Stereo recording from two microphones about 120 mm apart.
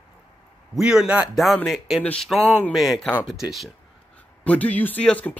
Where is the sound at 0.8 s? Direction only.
5° right (ahead or behind); by 2.7 s 15° left (ahead or behind).